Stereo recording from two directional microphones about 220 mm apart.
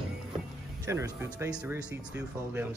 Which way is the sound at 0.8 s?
10° right (ahead or behind).